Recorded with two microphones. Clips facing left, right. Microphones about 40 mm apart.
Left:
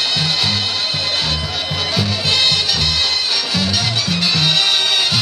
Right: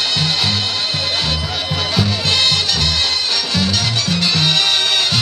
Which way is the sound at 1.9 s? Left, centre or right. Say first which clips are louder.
Right 1 dB; centre.